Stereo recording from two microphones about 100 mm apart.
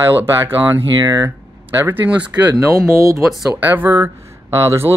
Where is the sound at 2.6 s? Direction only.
30° right (ahead or behind).